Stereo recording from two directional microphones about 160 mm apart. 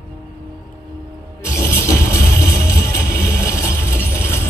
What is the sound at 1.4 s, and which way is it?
Music, 15° left (ahead or behind).